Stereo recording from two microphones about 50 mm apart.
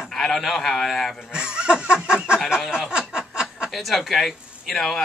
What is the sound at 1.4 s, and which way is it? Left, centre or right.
Snicker, centre.